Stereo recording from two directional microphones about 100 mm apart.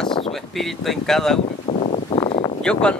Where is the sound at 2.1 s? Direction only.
65° left (ahead or behind).